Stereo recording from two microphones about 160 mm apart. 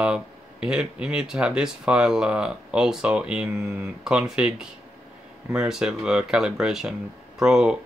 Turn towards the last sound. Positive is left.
turn(degrees=-5)  # may be behind; listen again after turning